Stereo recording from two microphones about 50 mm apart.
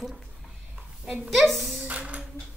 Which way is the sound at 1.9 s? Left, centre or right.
Right.